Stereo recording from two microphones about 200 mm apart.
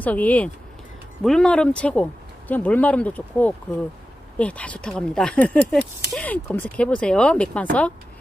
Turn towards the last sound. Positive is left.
turn(degrees=5)  # may be behind; listen again after turning